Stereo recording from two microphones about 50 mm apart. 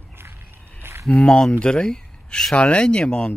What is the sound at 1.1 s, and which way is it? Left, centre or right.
Speech, left.